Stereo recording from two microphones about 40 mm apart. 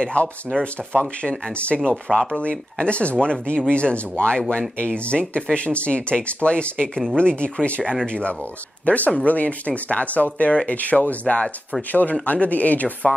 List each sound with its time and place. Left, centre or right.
0.0 s speech: left
1.7 s speech: centre
2.1 s speech: left